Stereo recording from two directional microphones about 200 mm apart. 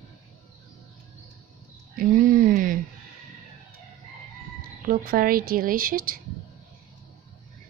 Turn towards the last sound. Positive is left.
turn(degrees=-45)  # may be behind; listen again after turning